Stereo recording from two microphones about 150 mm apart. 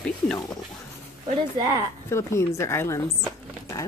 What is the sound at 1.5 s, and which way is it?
Speech, 25° right (ahead or behind).